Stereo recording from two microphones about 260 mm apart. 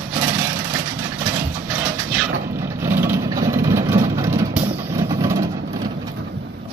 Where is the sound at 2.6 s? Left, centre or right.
Centre.